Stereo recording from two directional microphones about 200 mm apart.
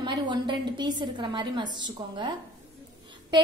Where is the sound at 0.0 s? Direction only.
20° right (ahead or behind).